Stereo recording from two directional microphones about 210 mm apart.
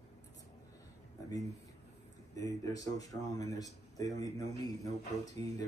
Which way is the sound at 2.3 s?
15° left (ahead or behind).